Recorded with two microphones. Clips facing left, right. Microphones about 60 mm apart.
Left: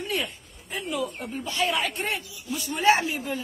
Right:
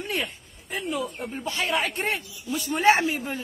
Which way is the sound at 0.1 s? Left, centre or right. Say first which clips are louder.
Right 1 dB; right.